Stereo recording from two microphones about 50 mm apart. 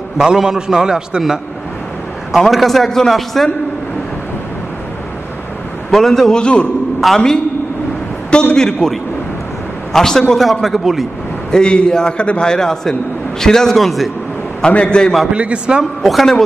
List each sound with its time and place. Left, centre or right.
0.2 s a man's voice: centre
2.3 s a man's voice: centre
5.9 s a man's voice: centre
6.3 s a man's voice: left
7.0 s a man's voice: centre
8.5 s a man's voice: centre
9.9 s a man's voice: centre
11.5 s a man's voice: centre
14.7 s a man's voice: left
15.3 s a man's voice: right
15.8 s a man's voice: centre